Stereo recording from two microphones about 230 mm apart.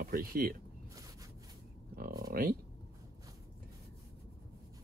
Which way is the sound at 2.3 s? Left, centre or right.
Right.